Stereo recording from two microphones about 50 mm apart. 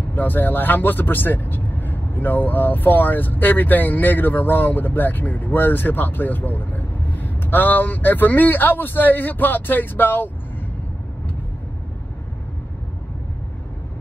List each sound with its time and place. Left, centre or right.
0.1 s speech: left